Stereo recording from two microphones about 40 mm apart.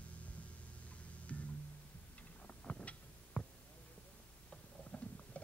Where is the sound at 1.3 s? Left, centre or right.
Left.